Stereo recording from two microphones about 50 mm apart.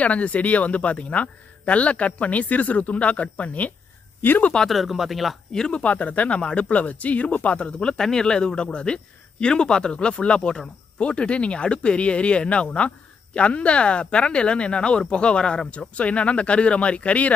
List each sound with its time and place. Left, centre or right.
0.0 s speech: left
4.2 s speech: left
4.6 s speech: centre
5.5 s a man's voice: centre
5.8 s speech: left
8.0 s a man's voice: centre